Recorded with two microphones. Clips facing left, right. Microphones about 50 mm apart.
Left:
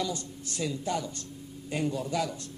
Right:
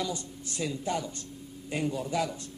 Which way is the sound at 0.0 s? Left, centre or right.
Centre.